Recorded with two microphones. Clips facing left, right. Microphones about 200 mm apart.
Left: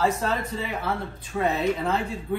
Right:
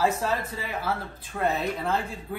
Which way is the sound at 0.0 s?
Centre (ahead or behind).